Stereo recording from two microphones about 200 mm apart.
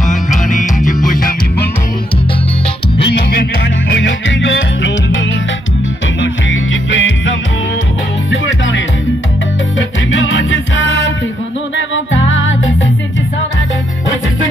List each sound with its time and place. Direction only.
3.9 s music: 65° left (ahead or behind)
6.5 s music: 70° left (ahead or behind)
10.1 s music: 75° left (ahead or behind)